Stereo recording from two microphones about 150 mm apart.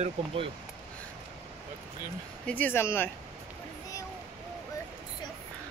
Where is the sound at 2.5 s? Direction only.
15° left (ahead or behind).